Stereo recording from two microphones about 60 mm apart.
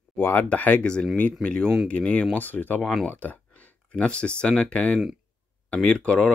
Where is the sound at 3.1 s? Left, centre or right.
Left.